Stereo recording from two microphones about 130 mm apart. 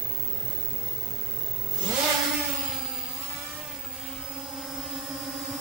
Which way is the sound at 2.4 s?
5° right (ahead or behind).